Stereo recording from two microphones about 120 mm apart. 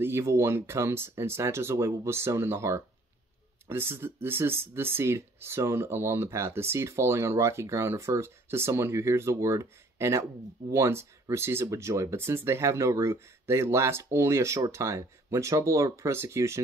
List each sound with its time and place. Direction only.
0.0 s speech: 20° right (ahead or behind)